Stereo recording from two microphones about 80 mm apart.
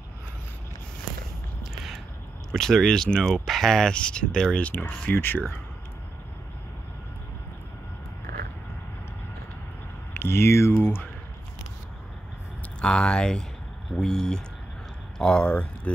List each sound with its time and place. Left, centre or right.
2.5 s speech: centre; by 5.6 s left
10.1 s speech: left
12.8 s speech: centre